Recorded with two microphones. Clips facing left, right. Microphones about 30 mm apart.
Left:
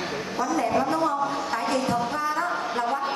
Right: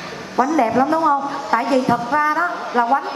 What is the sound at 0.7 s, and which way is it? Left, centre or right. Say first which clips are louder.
A woman's voice: right 7 dB; centre.